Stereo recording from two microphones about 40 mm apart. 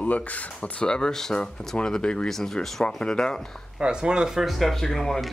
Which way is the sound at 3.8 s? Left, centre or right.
Right.